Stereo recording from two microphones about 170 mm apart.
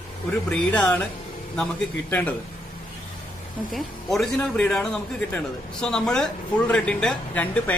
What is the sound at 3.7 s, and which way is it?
Speech, centre (ahead or behind).